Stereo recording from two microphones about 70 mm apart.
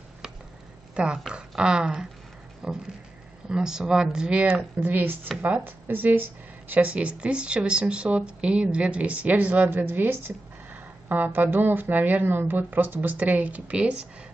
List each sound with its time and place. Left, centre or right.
0.9 s speech: centre
4.7 s speech: right